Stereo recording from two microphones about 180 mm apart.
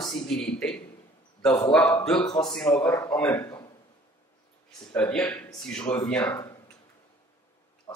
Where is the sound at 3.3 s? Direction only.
25° left (ahead or behind).